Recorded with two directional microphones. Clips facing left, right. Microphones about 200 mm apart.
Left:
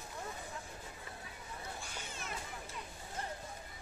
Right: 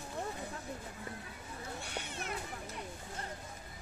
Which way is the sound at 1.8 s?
70° right (ahead or behind).